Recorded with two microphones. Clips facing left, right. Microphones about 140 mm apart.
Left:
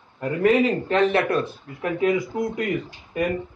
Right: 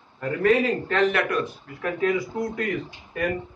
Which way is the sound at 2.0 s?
20° left (ahead or behind).